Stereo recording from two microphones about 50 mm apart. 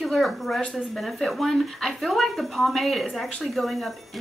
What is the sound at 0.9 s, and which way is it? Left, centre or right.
Speech, centre.